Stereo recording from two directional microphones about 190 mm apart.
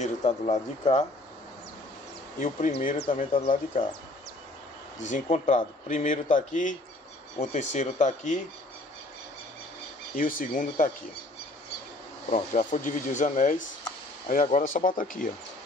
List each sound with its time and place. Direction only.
0.0 s speech: 40° left (ahead or behind)
2.3 s speech: 40° left (ahead or behind)
2.7 s speech: 50° left (ahead or behind)
3.2 s speech: 35° left (ahead or behind)
5.1 s speech: 40° left (ahead or behind)
10.1 s speech: 45° left (ahead or behind)
12.3 s speech: 40° left (ahead or behind)